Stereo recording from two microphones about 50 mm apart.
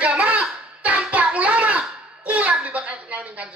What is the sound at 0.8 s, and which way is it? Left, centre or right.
Child singing, right.